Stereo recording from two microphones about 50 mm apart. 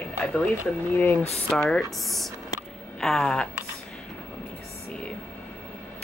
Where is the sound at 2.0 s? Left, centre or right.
Centre.